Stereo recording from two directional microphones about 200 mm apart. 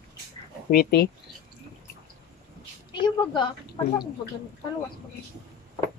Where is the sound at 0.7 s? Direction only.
50° left (ahead or behind).